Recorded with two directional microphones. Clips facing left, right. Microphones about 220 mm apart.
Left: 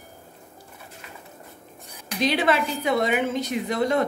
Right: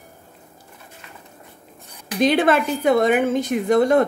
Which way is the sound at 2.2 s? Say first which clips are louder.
Right 5 dB; 50° right (ahead or behind).